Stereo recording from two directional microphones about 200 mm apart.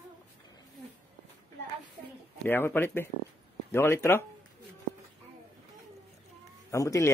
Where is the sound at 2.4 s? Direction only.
10° left (ahead or behind).